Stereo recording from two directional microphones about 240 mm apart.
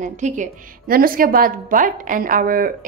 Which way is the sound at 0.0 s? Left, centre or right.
Right.